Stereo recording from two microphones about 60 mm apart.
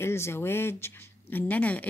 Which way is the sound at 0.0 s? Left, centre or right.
Left.